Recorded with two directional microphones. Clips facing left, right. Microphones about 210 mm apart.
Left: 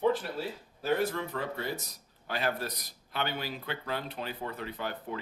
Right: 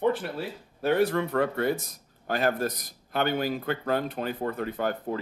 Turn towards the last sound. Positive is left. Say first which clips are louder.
# right 8 dB
turn(degrees=-45)  # may be behind; listen again after turning